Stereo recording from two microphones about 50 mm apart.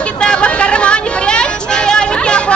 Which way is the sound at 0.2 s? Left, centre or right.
Centre.